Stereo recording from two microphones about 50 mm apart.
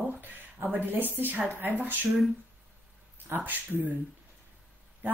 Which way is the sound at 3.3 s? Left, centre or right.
Right.